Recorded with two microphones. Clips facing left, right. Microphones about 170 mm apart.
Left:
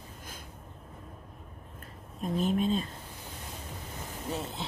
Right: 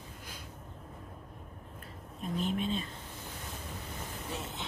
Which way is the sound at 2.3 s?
40° left (ahead or behind).